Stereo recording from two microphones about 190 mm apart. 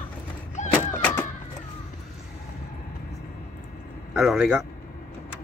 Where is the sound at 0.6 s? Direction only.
40° left (ahead or behind).